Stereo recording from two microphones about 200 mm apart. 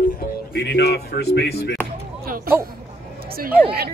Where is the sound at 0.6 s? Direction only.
60° left (ahead or behind).